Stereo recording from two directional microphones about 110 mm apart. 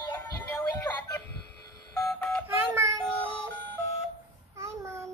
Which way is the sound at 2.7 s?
20° right (ahead or behind).